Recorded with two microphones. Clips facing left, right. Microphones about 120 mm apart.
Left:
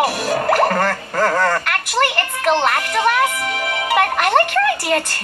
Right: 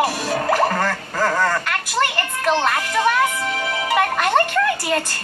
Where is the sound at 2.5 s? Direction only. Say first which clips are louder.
Left 2 dB; 15° left (ahead or behind).